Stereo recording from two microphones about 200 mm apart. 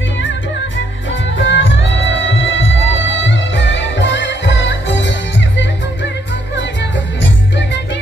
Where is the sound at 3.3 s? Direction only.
65° left (ahead or behind).